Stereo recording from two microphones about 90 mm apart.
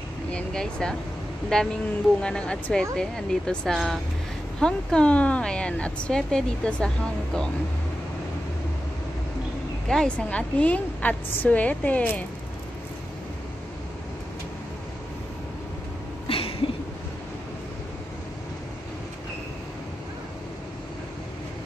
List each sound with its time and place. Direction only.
0.3 s a woman's voice: 10° left (ahead or behind)
9.8 s a woman's voice: 10° left (ahead or behind)
16.3 s a sound: 90° left